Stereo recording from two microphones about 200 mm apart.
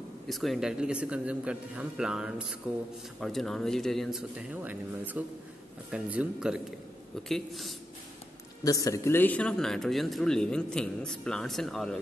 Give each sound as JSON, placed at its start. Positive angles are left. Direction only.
{"t": 0.3, "sound": "a man's voice", "side_deg": 0}
{"t": 8.6, "sound": "a man's voice", "side_deg": 15}